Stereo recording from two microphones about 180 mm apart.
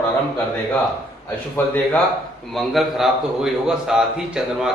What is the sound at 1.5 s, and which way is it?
Speech, 10° left (ahead or behind).